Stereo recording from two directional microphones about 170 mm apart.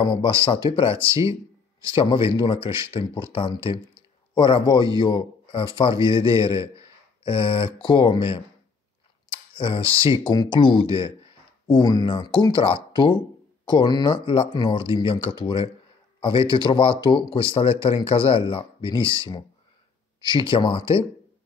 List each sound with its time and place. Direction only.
0.0 s a man's voice: 30° left (ahead or behind)